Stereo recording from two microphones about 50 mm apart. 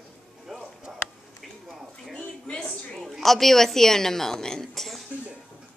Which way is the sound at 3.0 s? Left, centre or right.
Centre.